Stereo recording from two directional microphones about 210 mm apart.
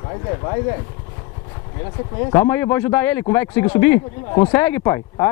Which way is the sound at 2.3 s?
10° left (ahead or behind).